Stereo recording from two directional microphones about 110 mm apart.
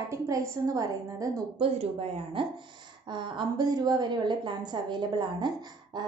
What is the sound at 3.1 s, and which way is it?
A woman's voice, 45° right (ahead or behind).